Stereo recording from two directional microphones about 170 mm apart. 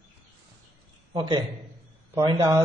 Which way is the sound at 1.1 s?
25° right (ahead or behind).